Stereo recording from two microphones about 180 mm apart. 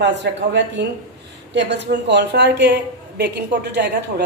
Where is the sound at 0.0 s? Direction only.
75° right (ahead or behind).